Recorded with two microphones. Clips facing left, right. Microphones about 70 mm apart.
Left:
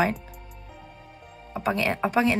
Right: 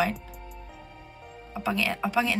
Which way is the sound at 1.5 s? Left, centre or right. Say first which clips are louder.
Left 3 dB; left.